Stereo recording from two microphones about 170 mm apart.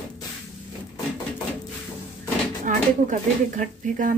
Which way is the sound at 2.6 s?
45° right (ahead or behind).